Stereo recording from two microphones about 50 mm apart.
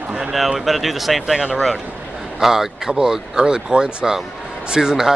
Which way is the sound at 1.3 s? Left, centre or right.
Centre.